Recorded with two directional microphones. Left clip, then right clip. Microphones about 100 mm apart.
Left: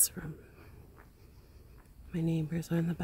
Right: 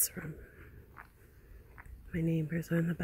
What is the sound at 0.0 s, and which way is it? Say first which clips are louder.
Speech: left 3 dB; 5° right (ahead or behind).